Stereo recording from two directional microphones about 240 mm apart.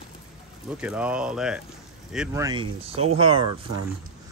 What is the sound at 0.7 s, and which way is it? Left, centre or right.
A man's voice, centre.